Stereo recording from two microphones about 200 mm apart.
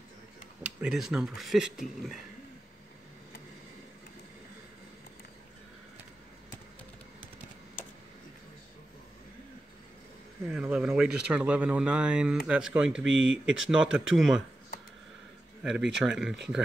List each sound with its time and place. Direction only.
0.6 s speech: 5° right (ahead or behind)
10.5 s speech: 5° right (ahead or behind)
13.0 s speech: 70° right (ahead or behind)
13.6 s speech: 5° right (ahead or behind)
15.6 s speech: centre (ahead or behind)